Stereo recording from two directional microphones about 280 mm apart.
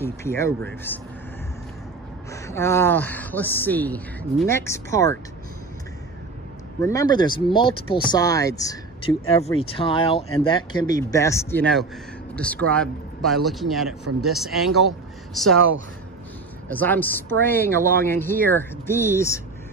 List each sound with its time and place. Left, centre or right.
0.0 s speech: centre
2.3 s speech: centre
6.8 s speech: centre
16.7 s speech: centre